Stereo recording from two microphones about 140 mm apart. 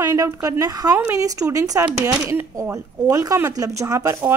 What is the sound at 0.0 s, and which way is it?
A woman's voice, 20° right (ahead or behind).